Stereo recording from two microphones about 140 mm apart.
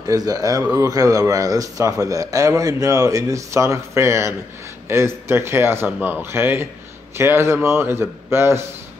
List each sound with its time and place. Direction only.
0.0 s speech: 25° right (ahead or behind)